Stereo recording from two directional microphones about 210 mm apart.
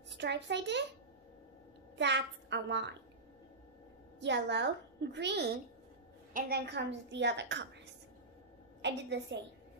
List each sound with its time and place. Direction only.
0.2 s a child's voice: 55° right (ahead or behind)
2.0 s a child's voice: 55° right (ahead or behind)
4.2 s a child's voice: 55° right (ahead or behind)
8.8 s a child's voice: 55° right (ahead or behind)